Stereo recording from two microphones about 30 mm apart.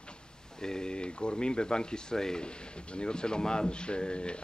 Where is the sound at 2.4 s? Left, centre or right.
Left.